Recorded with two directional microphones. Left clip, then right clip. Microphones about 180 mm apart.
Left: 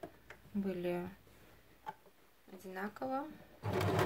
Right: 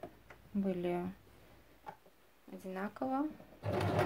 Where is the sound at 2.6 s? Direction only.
35° right (ahead or behind).